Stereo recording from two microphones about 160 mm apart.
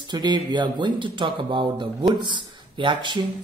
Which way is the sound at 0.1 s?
25° right (ahead or behind).